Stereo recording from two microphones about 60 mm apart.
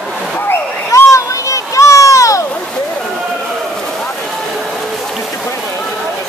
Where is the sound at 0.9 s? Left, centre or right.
Left.